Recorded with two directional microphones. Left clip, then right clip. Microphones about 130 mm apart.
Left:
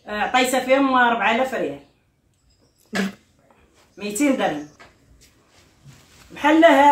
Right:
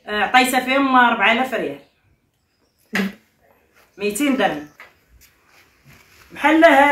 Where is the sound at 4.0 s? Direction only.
15° left (ahead or behind).